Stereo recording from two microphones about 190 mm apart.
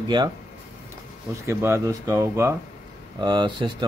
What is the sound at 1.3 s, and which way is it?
Speech, 15° right (ahead or behind).